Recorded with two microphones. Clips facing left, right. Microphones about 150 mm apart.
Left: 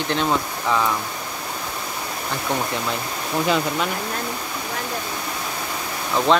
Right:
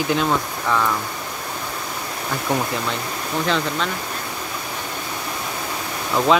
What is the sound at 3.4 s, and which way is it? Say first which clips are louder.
Speech: left 1 dB; 10° left (ahead or behind).